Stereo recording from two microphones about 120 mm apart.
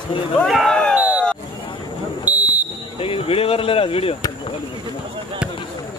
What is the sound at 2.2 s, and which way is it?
Fire alarm, 15° right (ahead or behind).